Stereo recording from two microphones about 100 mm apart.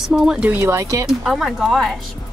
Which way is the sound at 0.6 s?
30° right (ahead or behind).